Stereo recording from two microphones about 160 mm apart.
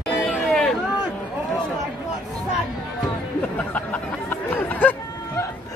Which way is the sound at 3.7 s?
10° left (ahead or behind).